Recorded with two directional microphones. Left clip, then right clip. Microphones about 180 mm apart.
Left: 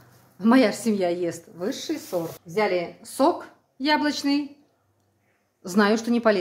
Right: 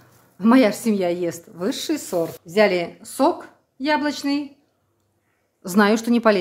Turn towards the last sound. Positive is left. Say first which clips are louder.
# right 3 dB
turn(degrees=-20)  # may be behind; listen again after turning